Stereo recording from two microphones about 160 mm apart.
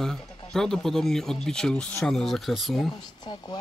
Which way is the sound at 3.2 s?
25° left (ahead or behind).